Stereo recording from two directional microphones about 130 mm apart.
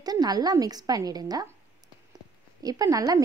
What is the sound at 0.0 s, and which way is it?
A woman's voice, 30° right (ahead or behind).